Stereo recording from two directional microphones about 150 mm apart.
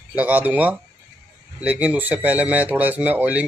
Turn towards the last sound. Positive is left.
turn(degrees=-10)  # may be behind; listen again after turning